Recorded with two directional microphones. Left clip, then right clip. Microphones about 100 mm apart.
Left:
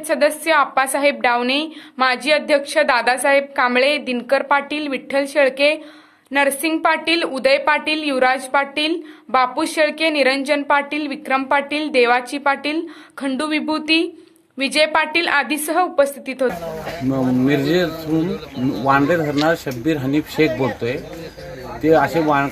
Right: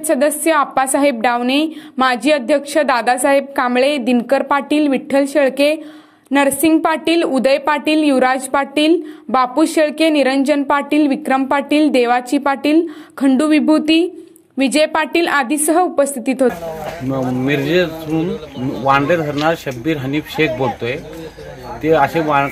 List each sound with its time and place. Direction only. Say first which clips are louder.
0.0 s speech: right 3 dB; 35° right (ahead or behind)
17.1 s speech: even; centre (ahead or behind)